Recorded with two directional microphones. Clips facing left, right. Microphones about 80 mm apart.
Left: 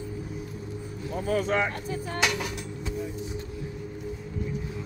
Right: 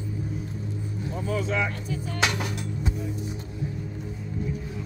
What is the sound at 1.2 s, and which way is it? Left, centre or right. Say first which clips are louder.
Speech: left 2 dB; left.